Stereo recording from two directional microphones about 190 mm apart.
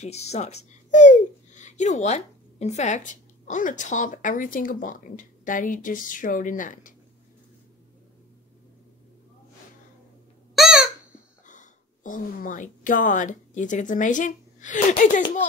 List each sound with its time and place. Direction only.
0.0 s a child's voice: 35° left (ahead or behind)
10.5 s a sound: centre (ahead or behind)
11.4 s speech: 40° left (ahead or behind)